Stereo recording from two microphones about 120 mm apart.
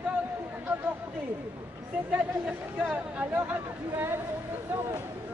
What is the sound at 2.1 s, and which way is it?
Speech, 10° right (ahead or behind).